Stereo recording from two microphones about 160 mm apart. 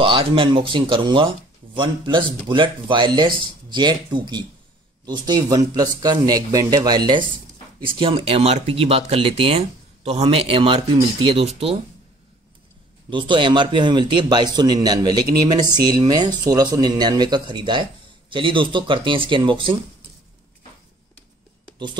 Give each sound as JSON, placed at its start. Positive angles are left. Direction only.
{"t": 0.0, "sound": "speech", "side_deg": -30}
{"t": 13.1, "sound": "speech", "side_deg": -30}